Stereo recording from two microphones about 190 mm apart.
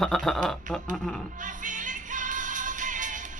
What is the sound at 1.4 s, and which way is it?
Music, 40° right (ahead or behind).